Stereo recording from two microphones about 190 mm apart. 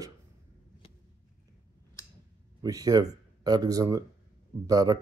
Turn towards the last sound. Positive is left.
turn(degrees=-20)  # may be behind; listen again after turning